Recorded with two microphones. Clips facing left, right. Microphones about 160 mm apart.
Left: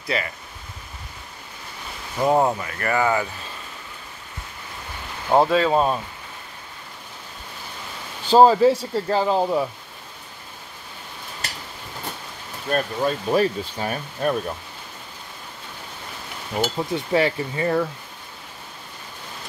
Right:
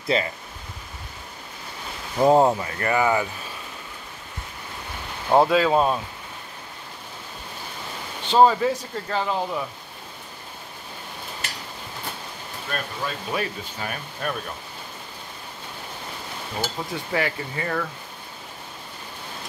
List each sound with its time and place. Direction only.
0.0 s speech: 25° right (ahead or behind)
2.1 s speech: 20° right (ahead or behind)
5.3 s speech: centre (ahead or behind)
8.3 s speech: 35° left (ahead or behind)
12.6 s speech: 40° left (ahead or behind)
16.6 s stir: 25° left (ahead or behind)